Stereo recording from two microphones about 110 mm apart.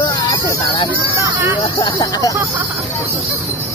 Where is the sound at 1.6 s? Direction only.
45° left (ahead or behind).